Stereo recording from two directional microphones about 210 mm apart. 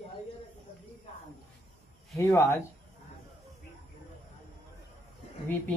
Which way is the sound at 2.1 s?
15° left (ahead or behind).